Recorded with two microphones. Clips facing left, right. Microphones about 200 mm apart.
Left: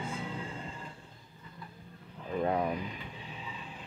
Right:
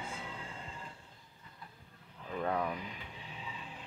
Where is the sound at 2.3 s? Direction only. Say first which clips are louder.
Left 4 dB; 20° left (ahead or behind).